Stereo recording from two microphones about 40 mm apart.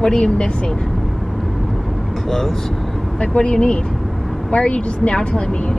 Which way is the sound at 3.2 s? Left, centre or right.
Left.